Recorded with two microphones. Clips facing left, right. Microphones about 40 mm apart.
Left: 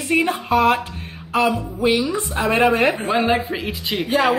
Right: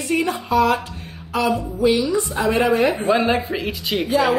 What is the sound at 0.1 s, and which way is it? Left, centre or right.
Speech, left.